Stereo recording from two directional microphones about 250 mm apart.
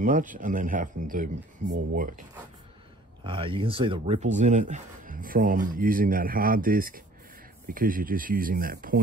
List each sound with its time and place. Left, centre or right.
0.0 s speech: right
3.3 s speech: right